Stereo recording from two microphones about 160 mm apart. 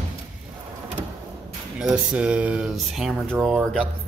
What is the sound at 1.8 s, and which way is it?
Speech, 5° right (ahead or behind).